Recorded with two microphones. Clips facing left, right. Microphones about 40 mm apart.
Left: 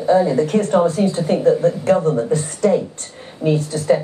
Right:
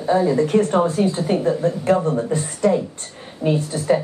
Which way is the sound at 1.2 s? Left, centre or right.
Centre.